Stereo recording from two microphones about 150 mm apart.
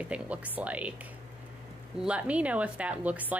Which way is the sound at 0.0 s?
10° right (ahead or behind).